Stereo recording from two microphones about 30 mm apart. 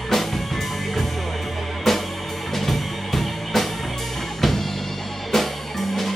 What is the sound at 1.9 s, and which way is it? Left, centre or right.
Music, centre.